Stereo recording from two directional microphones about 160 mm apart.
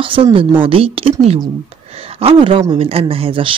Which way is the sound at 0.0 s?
35° right (ahead or behind).